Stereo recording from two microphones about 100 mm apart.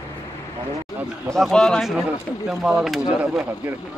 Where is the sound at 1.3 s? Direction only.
5° left (ahead or behind).